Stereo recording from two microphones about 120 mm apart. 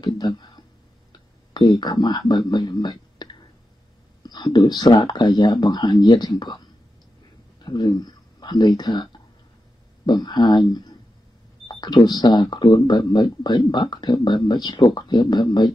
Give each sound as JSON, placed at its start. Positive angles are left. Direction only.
{"t": 0.0, "sound": "speech", "side_deg": 35}
{"t": 7.6, "sound": "speech", "side_deg": 35}